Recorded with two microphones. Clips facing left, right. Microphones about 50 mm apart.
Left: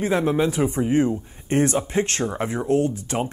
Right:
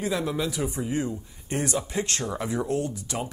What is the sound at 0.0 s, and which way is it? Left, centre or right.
Speech, left.